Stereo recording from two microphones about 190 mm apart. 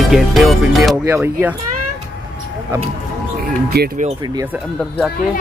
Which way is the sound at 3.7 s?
60° right (ahead or behind).